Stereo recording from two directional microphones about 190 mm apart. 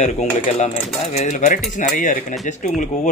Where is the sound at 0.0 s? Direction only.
35° left (ahead or behind).